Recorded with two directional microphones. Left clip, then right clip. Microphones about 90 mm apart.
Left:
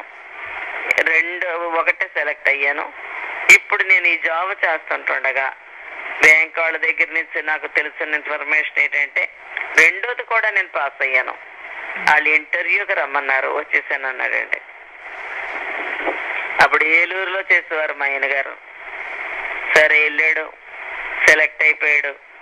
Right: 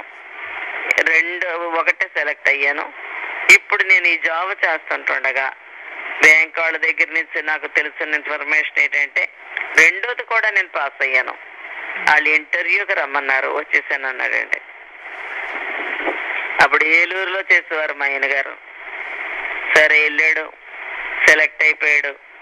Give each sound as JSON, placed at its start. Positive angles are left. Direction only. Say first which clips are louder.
{"t": 0.4, "sound": "radio", "louder": "right 1 dB", "side_deg": -35}
{"t": 1.1, "sound": "speech", "louder": "right 1 dB", "side_deg": -45}
{"t": 3.1, "sound": "radio", "louder": "even", "side_deg": -35}
{"t": 3.7, "sound": "speech", "louder": "right 1 dB", "side_deg": -50}
{"t": 6.4, "sound": "speech", "louder": "right 1 dB", "side_deg": -45}
{"t": 9.8, "sound": "speech", "louder": "right 1 dB", "side_deg": -40}
{"t": 11.7, "sound": "radio", "louder": "even", "side_deg": -35}
{"t": 12.3, "sound": "speech", "louder": "even", "side_deg": -50}
{"t": 15.1, "sound": "radio", "louder": "right 1 dB", "side_deg": -35}
{"t": 16.8, "sound": "speech", "louder": "right 1 dB", "side_deg": -45}
{"t": 18.9, "sound": "radio", "louder": "right 1 dB", "side_deg": -35}
{"t": 19.9, "sound": "speech", "louder": "right 1 dB", "side_deg": -50}
{"t": 20.8, "sound": "radio", "louder": "right 1 dB", "side_deg": -35}
{"t": 21.4, "sound": "speech", "louder": "even", "side_deg": -50}